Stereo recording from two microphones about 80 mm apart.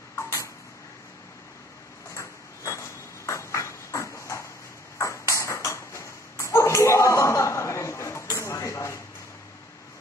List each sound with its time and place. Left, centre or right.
2.1 s ping: left